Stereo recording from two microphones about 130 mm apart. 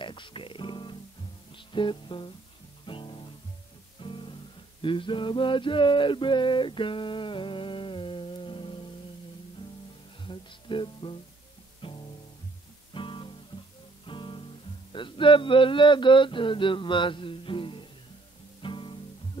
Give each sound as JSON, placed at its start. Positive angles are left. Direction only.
{"t": 0.0, "sound": "music", "side_deg": 40}
{"t": 4.8, "sound": "male singing", "side_deg": 40}
{"t": 10.2, "sound": "music", "side_deg": 40}
{"t": 12.9, "sound": "guitar", "side_deg": 40}
{"t": 14.0, "sound": "music", "side_deg": 40}
{"t": 14.9, "sound": "a sound", "side_deg": 40}
{"t": 18.6, "sound": "music", "side_deg": 40}